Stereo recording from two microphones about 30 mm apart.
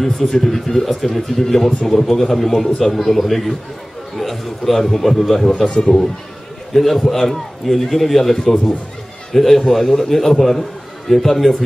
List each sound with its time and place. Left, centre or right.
0.0 s a man's voice: centre
5.7 s speech: left
6.7 s a man's voice: centre